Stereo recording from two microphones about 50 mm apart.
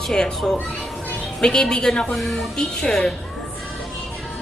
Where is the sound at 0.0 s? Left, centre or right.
Centre.